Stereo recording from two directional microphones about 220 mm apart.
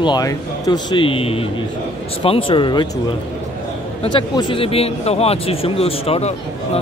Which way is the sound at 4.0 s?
20° left (ahead or behind).